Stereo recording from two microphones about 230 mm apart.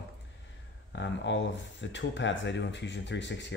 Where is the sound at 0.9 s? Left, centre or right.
Left.